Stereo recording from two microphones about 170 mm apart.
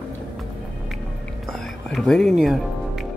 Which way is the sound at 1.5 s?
Centre (ahead or behind).